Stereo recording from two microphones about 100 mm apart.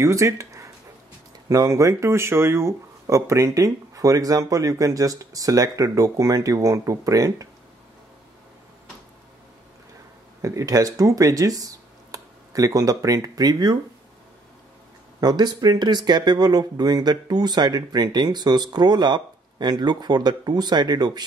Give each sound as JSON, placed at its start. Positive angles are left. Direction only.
{"t": 0.0, "sound": "speech", "side_deg": -30}
{"t": 10.4, "sound": "speech", "side_deg": -35}
{"t": 15.1, "sound": "speech", "side_deg": -40}